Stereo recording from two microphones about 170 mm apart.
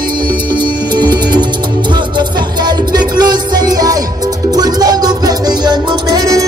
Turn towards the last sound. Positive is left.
turn(degrees=-20)  # may be behind; listen again after turning